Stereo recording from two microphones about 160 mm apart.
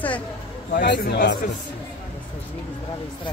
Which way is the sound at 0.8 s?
80° left.